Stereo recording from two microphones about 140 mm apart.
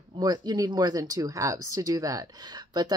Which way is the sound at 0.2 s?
30° right (ahead or behind).